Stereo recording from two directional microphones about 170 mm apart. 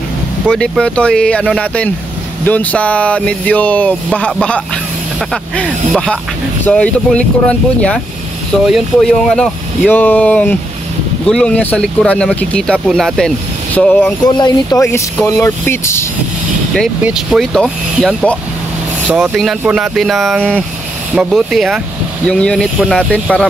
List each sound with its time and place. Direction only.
0.5 s speech: 5° left (ahead or behind)
14.2 s speech: 25° left (ahead or behind)
17.0 s speech: 5° right (ahead or behind)
19.0 s speech: 10° right (ahead or behind)